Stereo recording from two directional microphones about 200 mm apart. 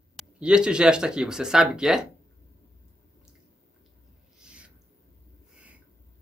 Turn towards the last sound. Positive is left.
turn(degrees=-5)  # may be behind; listen again after turning